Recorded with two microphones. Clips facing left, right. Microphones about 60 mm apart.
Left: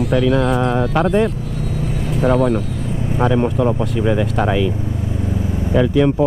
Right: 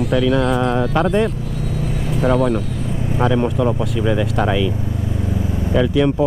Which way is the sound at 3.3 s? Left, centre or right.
Left.